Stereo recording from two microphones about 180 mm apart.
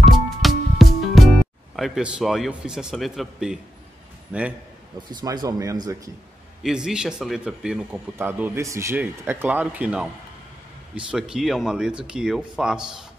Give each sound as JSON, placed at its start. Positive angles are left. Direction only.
{"t": 0.0, "sound": "music", "side_deg": 0}
{"t": 1.8, "sound": "a man's voice", "side_deg": -5}
{"t": 5.1, "sound": "speech", "side_deg": -20}
{"t": 6.6, "sound": "speech", "side_deg": -5}